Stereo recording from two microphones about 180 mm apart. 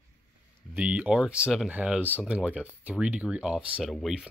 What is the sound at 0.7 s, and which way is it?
Speech, 5° right (ahead or behind).